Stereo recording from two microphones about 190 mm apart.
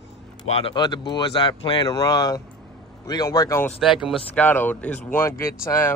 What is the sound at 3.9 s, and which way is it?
Speech, centre (ahead or behind).